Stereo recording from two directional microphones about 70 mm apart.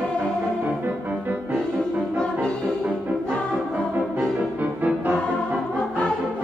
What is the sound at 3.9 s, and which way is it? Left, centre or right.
Music, right.